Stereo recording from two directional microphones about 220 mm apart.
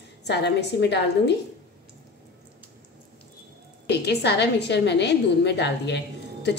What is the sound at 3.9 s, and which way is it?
A woman's voice, 50° left (ahead or behind).